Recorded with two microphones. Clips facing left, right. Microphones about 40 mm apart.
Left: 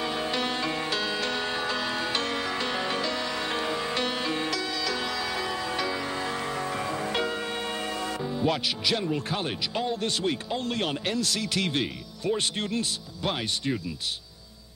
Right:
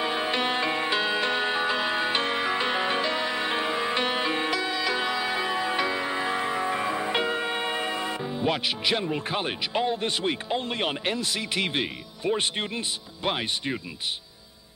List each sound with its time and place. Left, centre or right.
0.0 s music: right
9.1 s speech: right